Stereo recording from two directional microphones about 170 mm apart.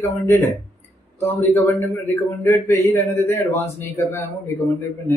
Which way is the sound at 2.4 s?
15° left (ahead or behind).